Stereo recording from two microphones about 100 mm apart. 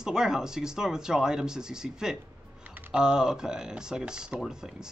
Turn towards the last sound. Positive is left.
turn(degrees=-5)  # may be behind; listen again after turning